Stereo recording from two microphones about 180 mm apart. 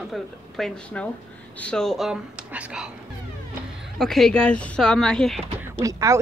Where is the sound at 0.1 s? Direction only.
Centre (ahead or behind).